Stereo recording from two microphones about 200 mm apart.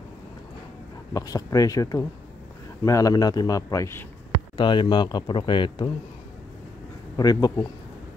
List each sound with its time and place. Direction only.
1.1 s a man's voice: 15° left (ahead or behind)
7.2 s speech: 20° left (ahead or behind)